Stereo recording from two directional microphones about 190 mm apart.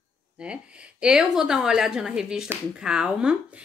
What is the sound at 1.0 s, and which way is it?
Speech, 5° right (ahead or behind).